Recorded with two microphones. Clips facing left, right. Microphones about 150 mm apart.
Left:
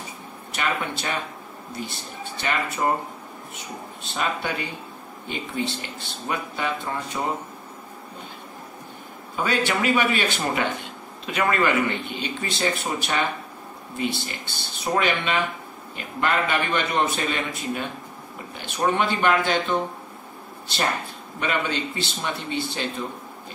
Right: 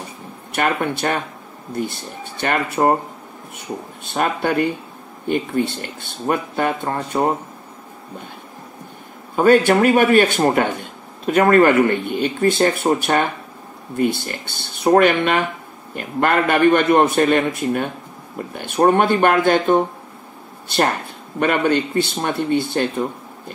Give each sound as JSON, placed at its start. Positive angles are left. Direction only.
{"t": 0.5, "sound": "a man's voice", "side_deg": -55}
{"t": 9.3, "sound": "a man's voice", "side_deg": -50}